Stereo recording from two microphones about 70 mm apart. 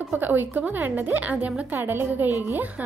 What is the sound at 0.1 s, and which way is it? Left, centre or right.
Speech, right.